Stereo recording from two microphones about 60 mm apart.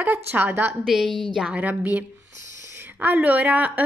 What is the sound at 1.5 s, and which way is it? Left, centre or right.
Speech, right.